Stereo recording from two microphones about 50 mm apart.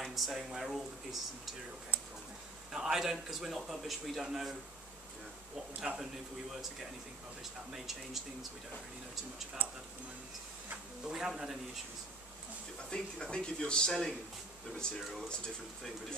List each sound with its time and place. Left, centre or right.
0.0 s speech: centre
2.7 s a man's voice: centre
5.9 s a man's voice: right
7.7 s speech: centre
11.1 s a man's voice: centre
12.9 s speech: centre